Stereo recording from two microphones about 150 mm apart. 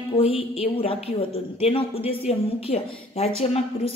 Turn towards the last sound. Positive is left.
turn(degrees=40)  # may be behind; listen again after turning